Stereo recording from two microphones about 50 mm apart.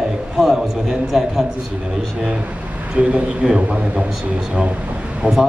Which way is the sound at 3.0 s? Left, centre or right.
Right.